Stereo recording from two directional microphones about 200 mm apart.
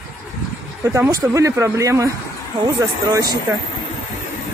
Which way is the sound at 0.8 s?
15° right (ahead or behind).